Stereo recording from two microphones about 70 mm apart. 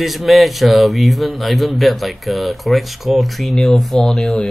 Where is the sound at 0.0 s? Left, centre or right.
Centre.